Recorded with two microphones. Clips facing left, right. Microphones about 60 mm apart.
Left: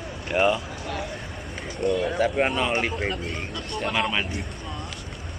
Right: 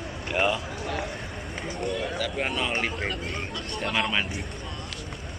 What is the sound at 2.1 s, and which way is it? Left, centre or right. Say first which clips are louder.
Speech: left 7 dB; left.